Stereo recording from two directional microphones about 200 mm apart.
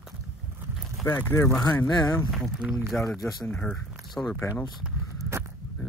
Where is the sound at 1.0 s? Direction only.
10° left (ahead or behind).